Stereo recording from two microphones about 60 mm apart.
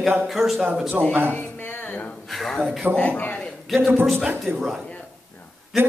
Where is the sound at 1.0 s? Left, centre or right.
Right.